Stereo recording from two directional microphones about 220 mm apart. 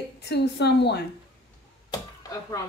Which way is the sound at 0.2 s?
50° left (ahead or behind).